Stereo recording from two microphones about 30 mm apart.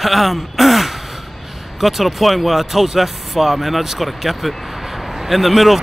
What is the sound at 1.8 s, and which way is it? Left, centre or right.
Speech, centre.